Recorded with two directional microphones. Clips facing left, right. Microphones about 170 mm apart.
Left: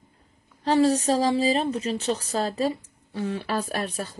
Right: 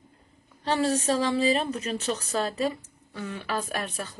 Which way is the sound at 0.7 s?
35° left (ahead or behind).